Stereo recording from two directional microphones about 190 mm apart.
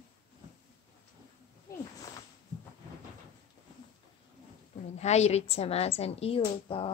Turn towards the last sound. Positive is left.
turn(degrees=30)  # may be behind; listen again after turning